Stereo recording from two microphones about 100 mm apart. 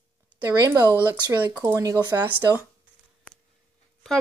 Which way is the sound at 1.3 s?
20° right (ahead or behind).